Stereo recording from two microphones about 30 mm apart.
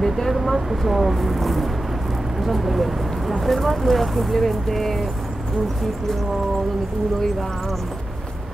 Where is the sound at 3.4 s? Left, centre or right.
Centre.